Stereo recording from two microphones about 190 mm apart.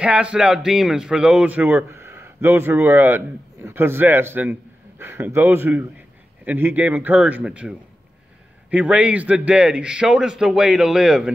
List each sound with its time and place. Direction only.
0.0 s a man's voice: 5° right (ahead or behind)